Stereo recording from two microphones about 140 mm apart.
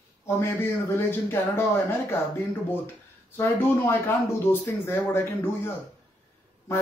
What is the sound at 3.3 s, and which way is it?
Speech, 15° left (ahead or behind).